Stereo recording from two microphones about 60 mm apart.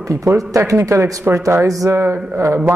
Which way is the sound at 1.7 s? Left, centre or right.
Right.